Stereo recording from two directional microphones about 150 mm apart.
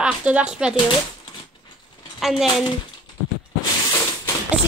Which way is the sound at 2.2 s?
Centre (ahead or behind).